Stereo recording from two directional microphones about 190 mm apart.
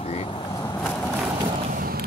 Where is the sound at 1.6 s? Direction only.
50° right (ahead or behind).